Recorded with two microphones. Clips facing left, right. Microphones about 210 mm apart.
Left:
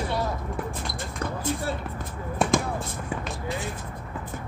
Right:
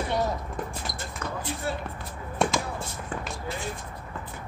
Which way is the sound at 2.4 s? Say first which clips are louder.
Left 3 dB; centre (ahead or behind).